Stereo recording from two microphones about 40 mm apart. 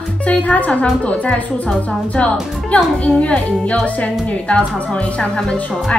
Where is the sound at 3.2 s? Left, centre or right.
Left.